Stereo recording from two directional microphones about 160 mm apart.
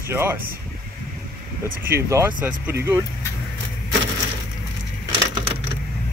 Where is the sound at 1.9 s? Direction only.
15° right (ahead or behind).